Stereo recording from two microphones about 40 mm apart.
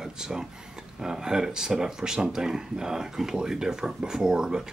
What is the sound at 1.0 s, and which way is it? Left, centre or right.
Speech, centre.